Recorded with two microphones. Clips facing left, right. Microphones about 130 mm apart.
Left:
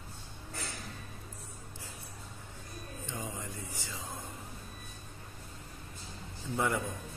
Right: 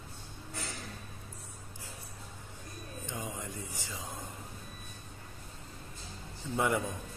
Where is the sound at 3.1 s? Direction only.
20° right (ahead or behind).